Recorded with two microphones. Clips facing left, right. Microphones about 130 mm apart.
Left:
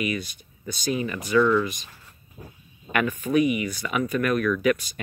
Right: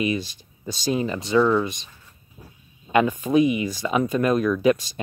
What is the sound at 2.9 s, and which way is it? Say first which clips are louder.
Speech: right 4 dB; 25° right (ahead or behind).